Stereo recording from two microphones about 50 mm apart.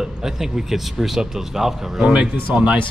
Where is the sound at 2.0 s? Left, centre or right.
Centre.